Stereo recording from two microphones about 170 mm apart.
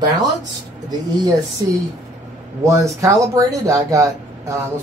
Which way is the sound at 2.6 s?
15° right (ahead or behind).